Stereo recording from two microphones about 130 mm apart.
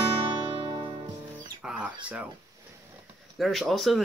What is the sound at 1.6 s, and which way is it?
Speech, 5° right (ahead or behind).